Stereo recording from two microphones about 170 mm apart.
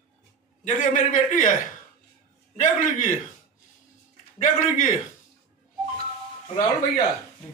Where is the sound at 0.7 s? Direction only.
50° left (ahead or behind).